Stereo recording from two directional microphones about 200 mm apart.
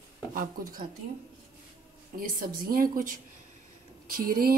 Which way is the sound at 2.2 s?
45° right (ahead or behind).